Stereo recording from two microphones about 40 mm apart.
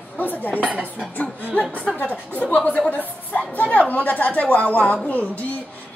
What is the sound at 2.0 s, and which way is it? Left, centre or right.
Speech, left.